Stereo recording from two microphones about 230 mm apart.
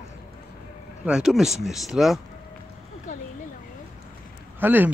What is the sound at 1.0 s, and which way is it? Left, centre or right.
Speech, centre.